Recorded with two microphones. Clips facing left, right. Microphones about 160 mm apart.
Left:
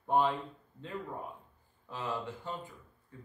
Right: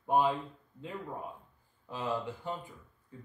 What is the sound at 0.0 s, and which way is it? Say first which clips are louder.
A man's voice: right 1 dB; 10° right (ahead or behind).